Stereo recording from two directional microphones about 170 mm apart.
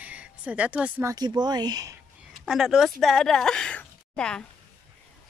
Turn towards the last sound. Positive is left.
turn(degrees=5)  # may be behind; listen again after turning